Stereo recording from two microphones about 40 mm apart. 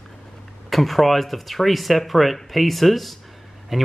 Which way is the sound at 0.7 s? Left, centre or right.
Centre.